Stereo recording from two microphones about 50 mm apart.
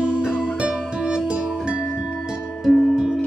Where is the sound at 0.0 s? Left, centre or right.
Right.